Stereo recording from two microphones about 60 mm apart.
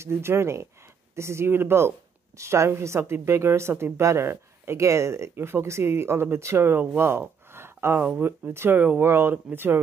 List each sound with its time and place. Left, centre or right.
0.0 s speech: right
4.8 s speech: right
7.0 s gasp: right
8.2 s speech: right
9.0 s speech: right